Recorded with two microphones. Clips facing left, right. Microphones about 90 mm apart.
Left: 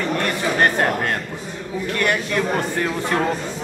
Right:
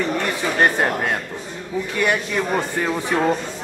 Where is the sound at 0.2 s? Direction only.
5° right (ahead or behind).